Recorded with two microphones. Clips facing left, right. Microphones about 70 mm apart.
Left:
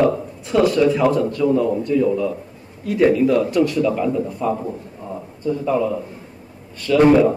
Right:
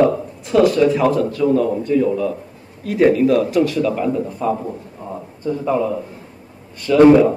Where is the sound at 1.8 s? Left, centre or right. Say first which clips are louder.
Right 1 dB; right.